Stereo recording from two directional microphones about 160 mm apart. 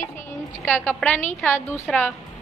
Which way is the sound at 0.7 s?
15° left (ahead or behind).